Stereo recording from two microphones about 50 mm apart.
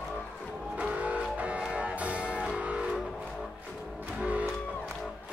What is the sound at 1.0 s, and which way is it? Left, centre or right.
Music, right.